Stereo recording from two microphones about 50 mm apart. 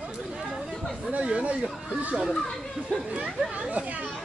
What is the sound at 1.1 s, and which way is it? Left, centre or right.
Chatter, right.